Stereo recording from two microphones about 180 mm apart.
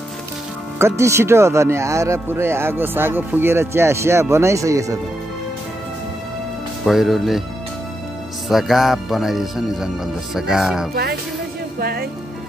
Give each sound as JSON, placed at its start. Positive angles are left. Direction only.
{"t": 0.7, "sound": "speech", "side_deg": -15}
{"t": 6.8, "sound": "speech", "side_deg": 0}
{"t": 8.5, "sound": "speech", "side_deg": 0}
{"t": 11.8, "sound": "speech", "side_deg": -60}